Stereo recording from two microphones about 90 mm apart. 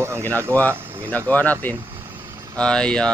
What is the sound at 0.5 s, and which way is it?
Speech, 20° left (ahead or behind).